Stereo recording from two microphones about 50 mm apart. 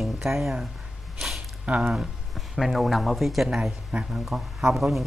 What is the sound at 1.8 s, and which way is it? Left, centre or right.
Speech, centre.